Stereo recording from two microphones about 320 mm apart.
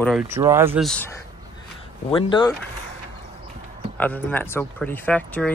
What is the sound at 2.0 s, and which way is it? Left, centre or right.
Speech, centre.